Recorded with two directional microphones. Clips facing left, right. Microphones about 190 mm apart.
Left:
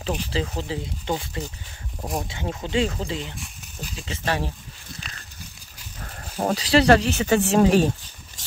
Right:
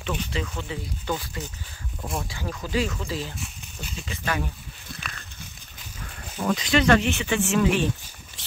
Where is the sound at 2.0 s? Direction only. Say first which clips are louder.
Left 3 dB; 35° left (ahead or behind).